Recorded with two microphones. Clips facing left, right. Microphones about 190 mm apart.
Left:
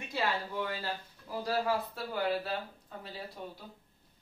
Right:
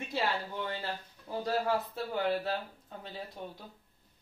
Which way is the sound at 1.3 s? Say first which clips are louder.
Right 2 dB; 25° right (ahead or behind).